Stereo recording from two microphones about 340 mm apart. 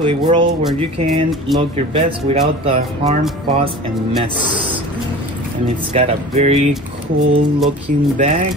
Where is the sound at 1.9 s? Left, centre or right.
Centre.